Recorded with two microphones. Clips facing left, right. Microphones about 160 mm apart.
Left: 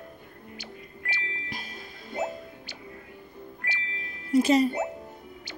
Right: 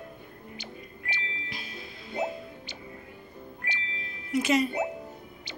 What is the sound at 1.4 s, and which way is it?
Music, 45° left (ahead or behind).